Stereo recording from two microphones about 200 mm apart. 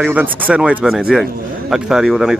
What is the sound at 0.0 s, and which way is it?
Speech, 10° right (ahead or behind).